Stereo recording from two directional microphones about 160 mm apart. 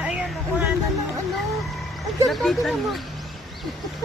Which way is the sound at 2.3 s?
Centre (ahead or behind).